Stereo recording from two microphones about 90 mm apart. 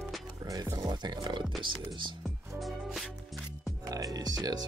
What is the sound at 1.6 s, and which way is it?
Speech, 65° right (ahead or behind).